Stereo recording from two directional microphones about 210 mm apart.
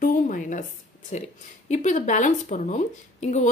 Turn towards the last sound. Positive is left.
turn(degrees=35)  # may be behind; listen again after turning